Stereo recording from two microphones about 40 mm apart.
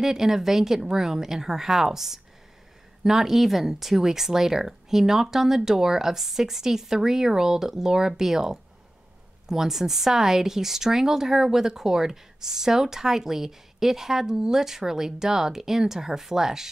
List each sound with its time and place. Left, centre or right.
0.0 s speech: centre